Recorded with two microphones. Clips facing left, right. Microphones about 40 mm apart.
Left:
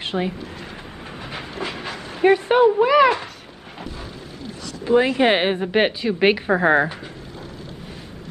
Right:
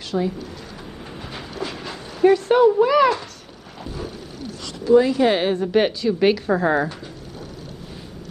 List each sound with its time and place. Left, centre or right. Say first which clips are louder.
0.0 s speech: right 1 dB; left
1.5 s a sound: even; left
2.4 s speech: even; left
4.8 s a woman's voice: right 1 dB; left